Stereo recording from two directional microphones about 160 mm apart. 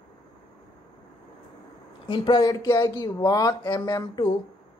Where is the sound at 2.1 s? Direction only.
30° left (ahead or behind).